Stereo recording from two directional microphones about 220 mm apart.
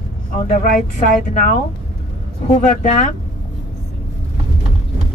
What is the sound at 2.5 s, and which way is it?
Speech, 35° left (ahead or behind).